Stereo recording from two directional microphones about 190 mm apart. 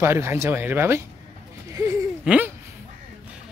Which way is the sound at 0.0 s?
15° right (ahead or behind).